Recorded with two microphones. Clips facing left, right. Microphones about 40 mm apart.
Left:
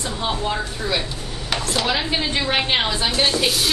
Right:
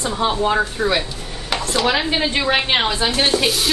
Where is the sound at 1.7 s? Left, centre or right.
Centre.